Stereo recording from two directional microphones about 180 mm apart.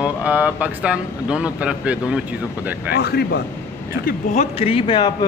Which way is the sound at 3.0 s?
65° left (ahead or behind).